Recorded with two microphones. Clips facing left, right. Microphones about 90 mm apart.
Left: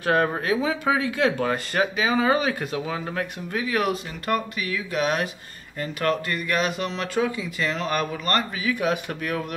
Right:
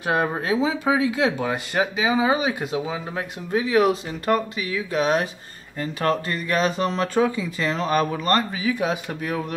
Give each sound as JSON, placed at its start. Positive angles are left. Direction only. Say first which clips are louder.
{"t": 0.0, "sound": "speech", "louder": "left 1 dB", "side_deg": -15}